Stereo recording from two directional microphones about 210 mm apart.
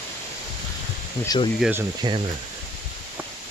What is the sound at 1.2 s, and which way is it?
Speech, 20° left (ahead or behind).